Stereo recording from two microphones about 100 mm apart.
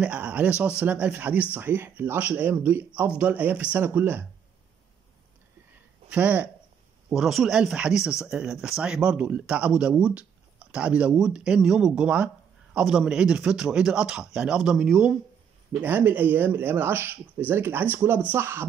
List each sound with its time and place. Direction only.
0.0 s speech: 15° right (ahead or behind)
6.0 s speech: 15° right (ahead or behind)
7.1 s speech: centre (ahead or behind)
15.8 s speech: 20° right (ahead or behind)